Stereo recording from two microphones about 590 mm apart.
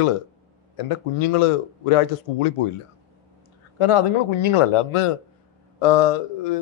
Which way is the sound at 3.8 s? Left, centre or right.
Left.